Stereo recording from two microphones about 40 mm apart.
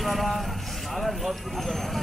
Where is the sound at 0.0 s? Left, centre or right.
Centre.